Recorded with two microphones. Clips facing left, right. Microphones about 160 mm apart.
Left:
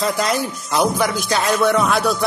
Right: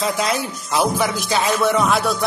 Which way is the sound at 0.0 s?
Centre (ahead or behind).